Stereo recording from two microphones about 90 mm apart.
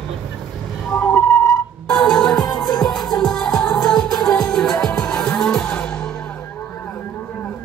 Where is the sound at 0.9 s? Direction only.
20° left (ahead or behind).